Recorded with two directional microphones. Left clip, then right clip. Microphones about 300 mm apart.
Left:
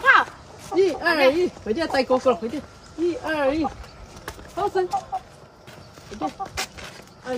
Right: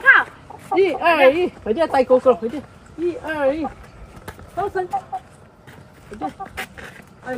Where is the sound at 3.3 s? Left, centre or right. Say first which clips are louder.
Right 3 dB; centre.